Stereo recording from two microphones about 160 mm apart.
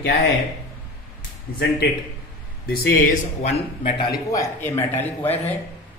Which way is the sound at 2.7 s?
70° left (ahead or behind).